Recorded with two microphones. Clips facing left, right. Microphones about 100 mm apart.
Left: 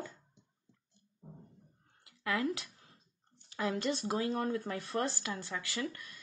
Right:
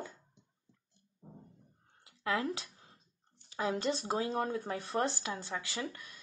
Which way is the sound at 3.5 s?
25° right (ahead or behind).